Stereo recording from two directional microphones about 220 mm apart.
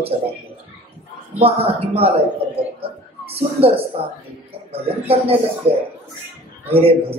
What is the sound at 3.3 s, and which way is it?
Speech, 25° right (ahead or behind).